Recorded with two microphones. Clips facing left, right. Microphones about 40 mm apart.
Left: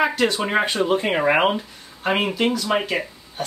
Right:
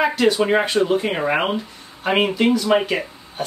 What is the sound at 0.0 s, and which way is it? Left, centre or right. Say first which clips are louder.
Speech: right 3 dB; centre.